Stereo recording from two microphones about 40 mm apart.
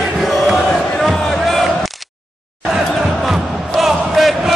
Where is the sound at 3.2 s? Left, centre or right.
Centre.